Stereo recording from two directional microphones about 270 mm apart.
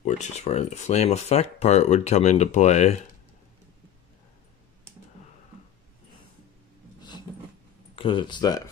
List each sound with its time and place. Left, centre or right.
0.0 s speech: left
7.9 s speech: centre